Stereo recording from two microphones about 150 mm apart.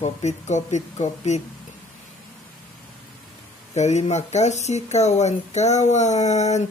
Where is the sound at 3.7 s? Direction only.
50° left (ahead or behind).